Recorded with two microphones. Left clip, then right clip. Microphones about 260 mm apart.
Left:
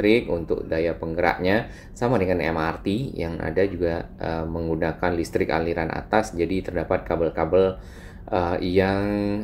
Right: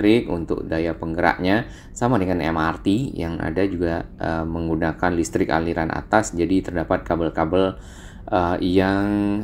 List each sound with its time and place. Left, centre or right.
0.1 s speech: right
2.8 s speech: right
3.2 s speech: right
6.3 s speech: right
6.6 s speech: right
8.7 s speech: right